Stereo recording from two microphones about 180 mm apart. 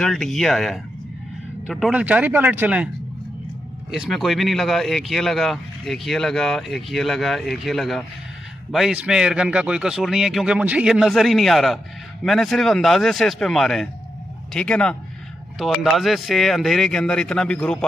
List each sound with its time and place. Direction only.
0.0 s a man's voice: centre (ahead or behind)
3.9 s a man's voice: centre (ahead or behind)